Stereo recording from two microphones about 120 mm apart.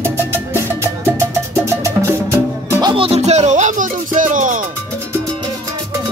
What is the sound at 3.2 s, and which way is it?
Music, 70° right (ahead or behind).